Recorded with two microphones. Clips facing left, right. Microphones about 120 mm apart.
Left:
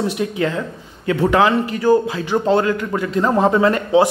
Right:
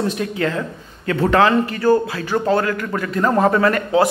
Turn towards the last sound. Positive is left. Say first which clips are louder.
# left 2 dB
turn(degrees=20)  # may be behind; listen again after turning